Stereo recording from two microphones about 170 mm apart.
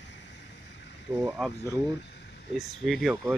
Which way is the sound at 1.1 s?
15° right (ahead or behind).